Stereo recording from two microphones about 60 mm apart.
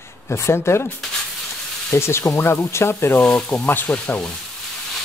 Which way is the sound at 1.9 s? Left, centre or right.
Left.